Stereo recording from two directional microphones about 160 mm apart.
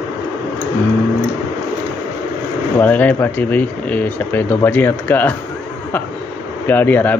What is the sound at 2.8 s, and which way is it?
Speech, 10° left (ahead or behind).